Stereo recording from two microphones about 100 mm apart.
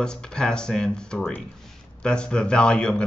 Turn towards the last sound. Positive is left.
turn(degrees=10)  # may be behind; listen again after turning